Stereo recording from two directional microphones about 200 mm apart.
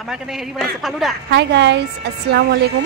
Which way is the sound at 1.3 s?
60° right (ahead or behind).